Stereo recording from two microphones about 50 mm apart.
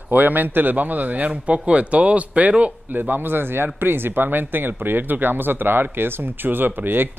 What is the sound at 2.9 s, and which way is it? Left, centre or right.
Speech, right.